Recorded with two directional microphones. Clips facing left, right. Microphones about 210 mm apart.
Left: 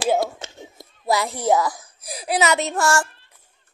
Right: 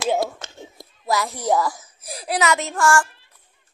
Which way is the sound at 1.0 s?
25° left (ahead or behind).